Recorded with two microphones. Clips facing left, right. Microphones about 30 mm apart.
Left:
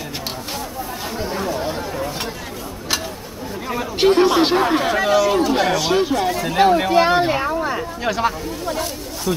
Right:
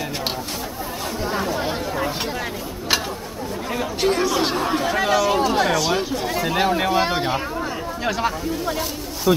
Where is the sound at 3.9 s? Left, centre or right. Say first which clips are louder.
Left 7 dB; left.